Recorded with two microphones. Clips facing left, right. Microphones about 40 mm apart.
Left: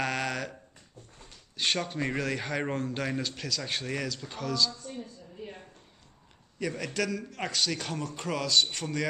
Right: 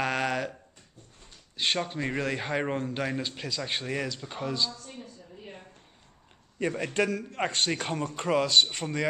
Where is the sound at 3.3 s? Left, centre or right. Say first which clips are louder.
Right 1 dB; right.